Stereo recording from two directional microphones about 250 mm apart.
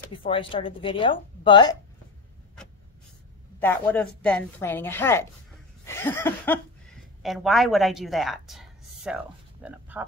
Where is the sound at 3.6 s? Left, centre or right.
Centre.